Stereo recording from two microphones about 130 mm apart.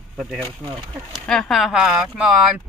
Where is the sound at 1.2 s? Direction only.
5° left (ahead or behind).